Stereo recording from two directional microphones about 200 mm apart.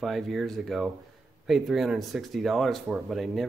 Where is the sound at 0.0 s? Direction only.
Centre (ahead or behind).